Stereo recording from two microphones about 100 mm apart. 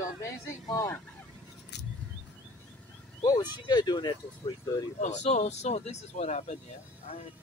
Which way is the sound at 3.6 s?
45° left (ahead or behind).